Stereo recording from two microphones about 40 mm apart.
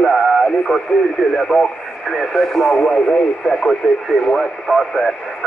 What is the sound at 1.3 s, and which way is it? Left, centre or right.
Speech, centre.